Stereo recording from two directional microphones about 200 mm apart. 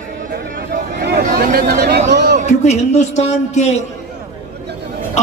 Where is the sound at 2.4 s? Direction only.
35° left (ahead or behind).